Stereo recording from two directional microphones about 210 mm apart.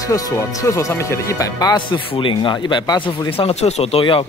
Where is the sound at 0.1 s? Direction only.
15° left (ahead or behind).